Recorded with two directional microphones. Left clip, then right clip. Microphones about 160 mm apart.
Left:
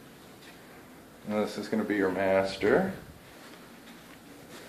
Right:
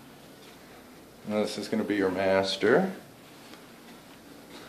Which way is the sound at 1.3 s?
5° right (ahead or behind).